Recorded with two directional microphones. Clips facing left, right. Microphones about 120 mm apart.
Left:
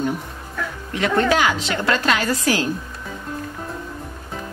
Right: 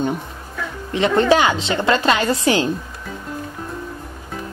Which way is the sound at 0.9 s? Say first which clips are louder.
Right 3 dB; 25° right (ahead or behind).